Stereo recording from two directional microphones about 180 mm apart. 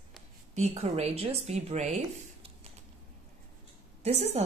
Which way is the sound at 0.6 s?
35° right (ahead or behind).